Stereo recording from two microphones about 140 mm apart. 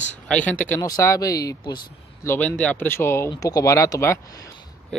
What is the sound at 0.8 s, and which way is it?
Speech, 20° left (ahead or behind).